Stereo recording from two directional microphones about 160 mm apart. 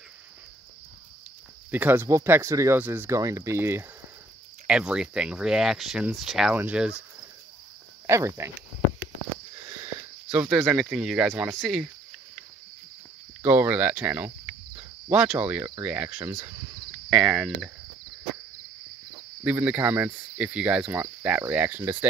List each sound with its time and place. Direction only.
1.7 s speech: 10° right (ahead or behind)
4.6 s speech: 5° right (ahead or behind)
8.1 s speech: 15° right (ahead or behind)
9.7 s a sound: 15° right (ahead or behind)
10.5 s speech: centre (ahead or behind)
13.4 s speech: 15° right (ahead or behind)
19.4 s speech: 10° right (ahead or behind)